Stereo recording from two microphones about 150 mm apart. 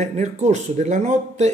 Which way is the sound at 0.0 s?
50° right (ahead or behind).